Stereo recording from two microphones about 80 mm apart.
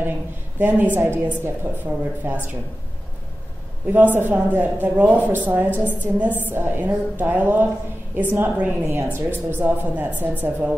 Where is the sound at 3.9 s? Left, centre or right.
Right.